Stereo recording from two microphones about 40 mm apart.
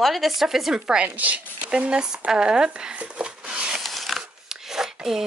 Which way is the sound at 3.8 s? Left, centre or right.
Centre.